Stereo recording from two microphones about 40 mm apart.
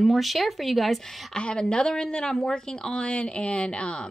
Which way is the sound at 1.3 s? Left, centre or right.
Left.